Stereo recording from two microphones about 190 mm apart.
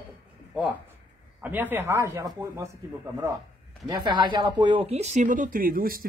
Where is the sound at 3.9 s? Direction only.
25° right (ahead or behind).